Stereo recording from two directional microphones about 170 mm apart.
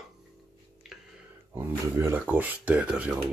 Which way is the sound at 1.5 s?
15° right (ahead or behind).